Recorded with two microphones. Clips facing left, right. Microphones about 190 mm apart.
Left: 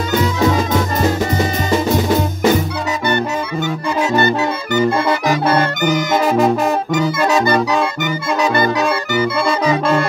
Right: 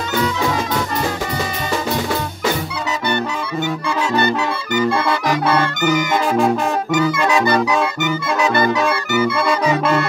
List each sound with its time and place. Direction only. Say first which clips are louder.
5.5 s brass instrument: even; 45° left (ahead or behind)
6.2 s music: left 3 dB; 5° left (ahead or behind)
7.2 s music: left 3 dB; 40° left (ahead or behind)